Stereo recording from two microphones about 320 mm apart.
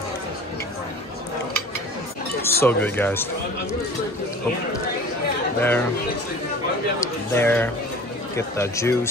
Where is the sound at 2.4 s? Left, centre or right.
Centre.